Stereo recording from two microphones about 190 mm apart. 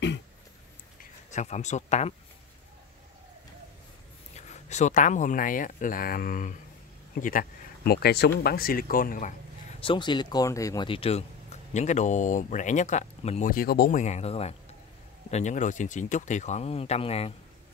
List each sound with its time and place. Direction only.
1.3 s speech: 40° left (ahead or behind)
4.4 s speech: 35° left (ahead or behind)
9.8 s speech: 25° left (ahead or behind)
13.5 s speech: 50° left (ahead or behind); by 17.3 s 30° left (ahead or behind)